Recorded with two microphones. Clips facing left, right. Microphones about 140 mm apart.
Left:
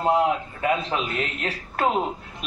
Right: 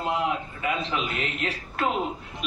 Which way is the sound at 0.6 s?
40° left (ahead or behind).